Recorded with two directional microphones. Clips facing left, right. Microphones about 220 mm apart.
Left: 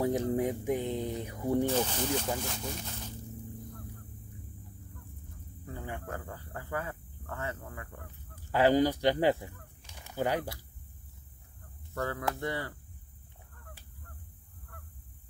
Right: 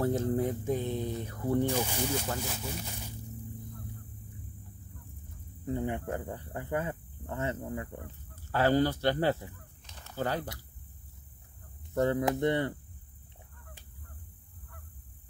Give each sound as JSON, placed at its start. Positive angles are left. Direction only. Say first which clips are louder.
{"t": 0.0, "sound": "a sound", "louder": "even", "side_deg": 15}
{"t": 1.7, "sound": "speech", "louder": "left 1 dB", "side_deg": -10}
{"t": 5.7, "sound": "speech", "louder": "right 8 dB", "side_deg": -20}
{"t": 8.5, "sound": "speech", "louder": "left 1 dB", "side_deg": 15}
{"t": 11.9, "sound": "speech", "louder": "right 7 dB", "side_deg": -20}